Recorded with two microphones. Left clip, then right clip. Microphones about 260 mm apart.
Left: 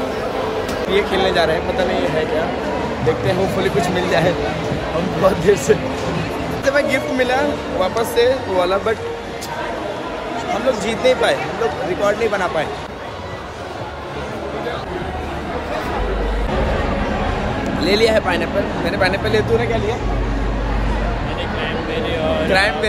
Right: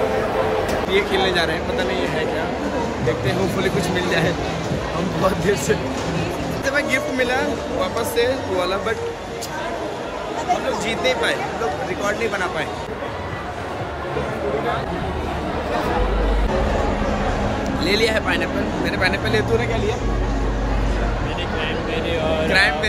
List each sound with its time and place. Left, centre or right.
0.9 s a man's voice: centre
3.9 s a man's voice: centre
10.9 s a man's voice: centre
17.8 s a man's voice: centre
21.9 s a sound: centre
22.5 s a man's voice: centre